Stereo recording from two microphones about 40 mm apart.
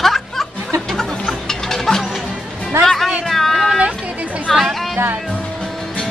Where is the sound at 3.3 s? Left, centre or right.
Centre.